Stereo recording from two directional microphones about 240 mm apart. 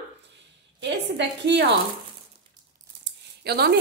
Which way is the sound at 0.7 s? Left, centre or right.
Right.